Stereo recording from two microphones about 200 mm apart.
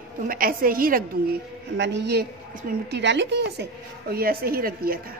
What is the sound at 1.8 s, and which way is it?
Speech, 60° right (ahead or behind).